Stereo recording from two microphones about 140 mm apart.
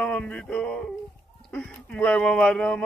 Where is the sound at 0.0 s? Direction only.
10° left (ahead or behind).